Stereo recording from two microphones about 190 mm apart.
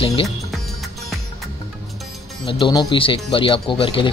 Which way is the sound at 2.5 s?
25° left (ahead or behind).